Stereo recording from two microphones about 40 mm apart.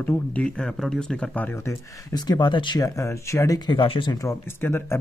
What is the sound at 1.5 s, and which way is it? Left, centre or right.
Speech, left.